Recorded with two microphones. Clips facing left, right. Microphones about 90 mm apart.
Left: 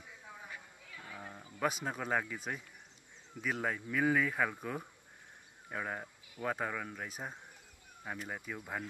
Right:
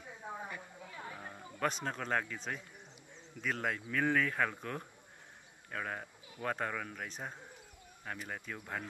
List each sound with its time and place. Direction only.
0.2 s a sound: 40° right (ahead or behind)
0.8 s music: 35° right (ahead or behind)
1.3 s speech: 5° left (ahead or behind)